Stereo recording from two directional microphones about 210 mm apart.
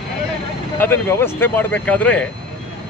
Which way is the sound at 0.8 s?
10° left (ahead or behind).